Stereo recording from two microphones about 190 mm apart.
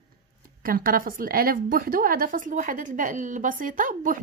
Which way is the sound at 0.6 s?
50° right (ahead or behind).